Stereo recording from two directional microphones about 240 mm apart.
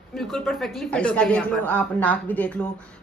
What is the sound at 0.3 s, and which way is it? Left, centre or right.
A woman's voice, centre.